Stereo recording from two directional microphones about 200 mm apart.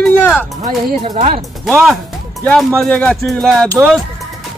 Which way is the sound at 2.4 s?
5° left (ahead or behind).